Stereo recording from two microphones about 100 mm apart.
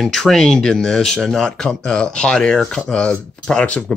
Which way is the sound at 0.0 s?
Centre (ahead or behind).